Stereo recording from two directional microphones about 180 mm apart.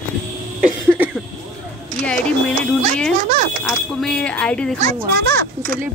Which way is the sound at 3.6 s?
5° left (ahead or behind).